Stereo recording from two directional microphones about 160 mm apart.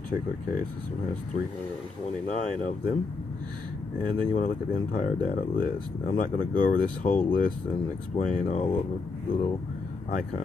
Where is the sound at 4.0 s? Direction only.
55° left (ahead or behind).